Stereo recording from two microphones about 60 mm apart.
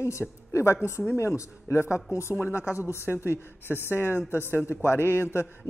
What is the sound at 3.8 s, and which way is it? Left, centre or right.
Speech, left.